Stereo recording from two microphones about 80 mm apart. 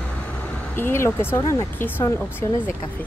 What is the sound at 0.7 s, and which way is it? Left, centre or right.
Speech, left.